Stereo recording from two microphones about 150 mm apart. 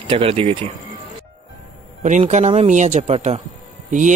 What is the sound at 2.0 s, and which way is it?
Speech, 55° right (ahead or behind).